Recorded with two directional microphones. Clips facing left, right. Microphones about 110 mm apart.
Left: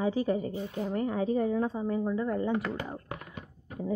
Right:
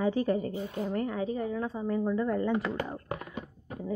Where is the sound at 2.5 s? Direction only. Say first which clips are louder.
Right 1 dB; centre (ahead or behind).